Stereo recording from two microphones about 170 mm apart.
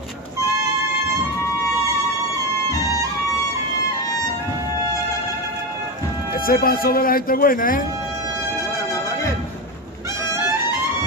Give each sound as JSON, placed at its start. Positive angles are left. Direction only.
{"t": 6.3, "sound": "speech", "side_deg": 60}